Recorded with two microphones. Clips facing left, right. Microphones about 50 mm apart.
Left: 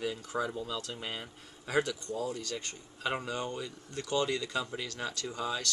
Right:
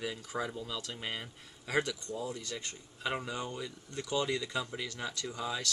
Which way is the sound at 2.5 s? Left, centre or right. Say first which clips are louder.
Left 2 dB; centre.